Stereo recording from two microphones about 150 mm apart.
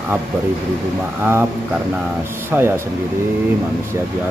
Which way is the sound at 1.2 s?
15° right (ahead or behind).